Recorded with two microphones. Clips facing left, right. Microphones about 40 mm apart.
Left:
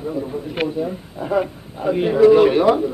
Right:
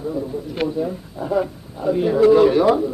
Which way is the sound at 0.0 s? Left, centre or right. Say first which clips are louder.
Even; left.